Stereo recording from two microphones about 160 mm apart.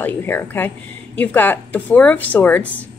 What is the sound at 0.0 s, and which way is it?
A woman's voice, 15° left (ahead or behind).